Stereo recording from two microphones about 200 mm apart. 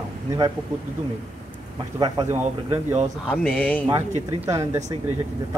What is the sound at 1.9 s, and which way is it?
Speech, 20° right (ahead or behind).